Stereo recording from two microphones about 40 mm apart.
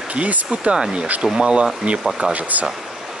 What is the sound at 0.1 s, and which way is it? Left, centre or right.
Speech, right.